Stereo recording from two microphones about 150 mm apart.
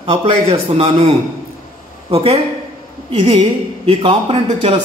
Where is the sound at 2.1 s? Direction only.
45° right (ahead or behind).